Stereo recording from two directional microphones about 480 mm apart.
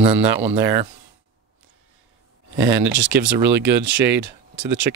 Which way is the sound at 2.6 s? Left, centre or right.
Right.